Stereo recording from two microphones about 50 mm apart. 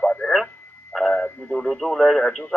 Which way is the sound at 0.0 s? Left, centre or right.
Left.